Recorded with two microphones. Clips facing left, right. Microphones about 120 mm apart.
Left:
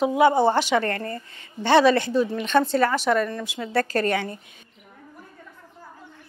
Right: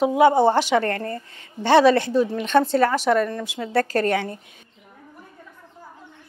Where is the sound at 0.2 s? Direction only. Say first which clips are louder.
Right 2 dB; 40° right (ahead or behind).